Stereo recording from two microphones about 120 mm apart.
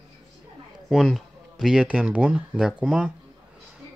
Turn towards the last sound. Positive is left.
turn(degrees=0)  # may be behind; listen again after turning